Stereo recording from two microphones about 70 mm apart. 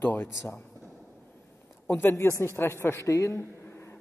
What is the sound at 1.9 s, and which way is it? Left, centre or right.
A woman's voice, left.